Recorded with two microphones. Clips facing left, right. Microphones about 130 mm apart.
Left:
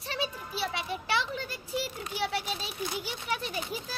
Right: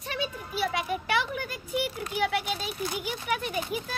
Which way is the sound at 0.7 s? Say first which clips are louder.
Right 2 dB; 30° left (ahead or behind).